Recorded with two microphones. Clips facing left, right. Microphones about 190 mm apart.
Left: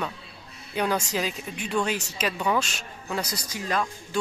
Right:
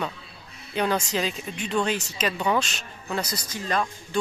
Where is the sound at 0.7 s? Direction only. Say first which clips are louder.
Right 1 dB; 10° left (ahead or behind).